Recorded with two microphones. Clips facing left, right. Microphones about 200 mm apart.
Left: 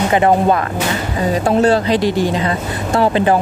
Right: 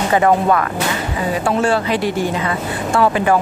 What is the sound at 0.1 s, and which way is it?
Speech, 25° left (ahead or behind).